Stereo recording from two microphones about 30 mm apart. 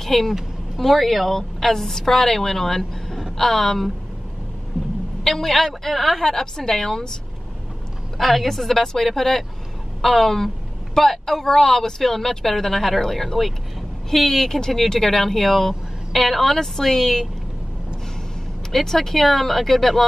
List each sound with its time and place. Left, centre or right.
0.0 s a woman's voice: centre
4.7 s vehicle: centre
5.2 s a woman's voice: centre
8.2 s a woman's voice: centre
16.5 s a woman's voice: centre
18.7 s a woman's voice: centre